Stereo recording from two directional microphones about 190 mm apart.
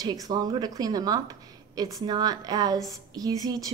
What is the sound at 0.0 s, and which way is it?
A woman's voice, 20° right (ahead or behind).